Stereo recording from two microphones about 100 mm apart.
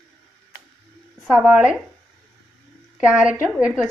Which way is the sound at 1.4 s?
15° right (ahead or behind).